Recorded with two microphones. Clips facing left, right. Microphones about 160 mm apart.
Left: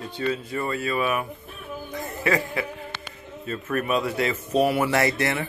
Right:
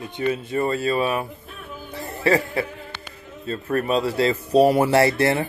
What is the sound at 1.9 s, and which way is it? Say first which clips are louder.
Music: right 5 dB; 35° right (ahead or behind).